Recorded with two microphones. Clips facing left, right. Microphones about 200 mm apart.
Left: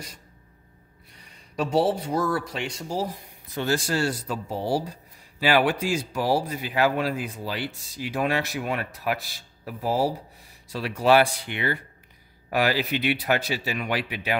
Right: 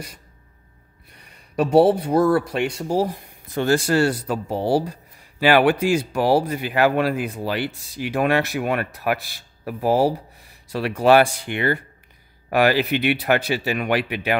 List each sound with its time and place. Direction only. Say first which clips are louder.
1.1 s a man's voice: right 7 dB; 60° right (ahead or behind)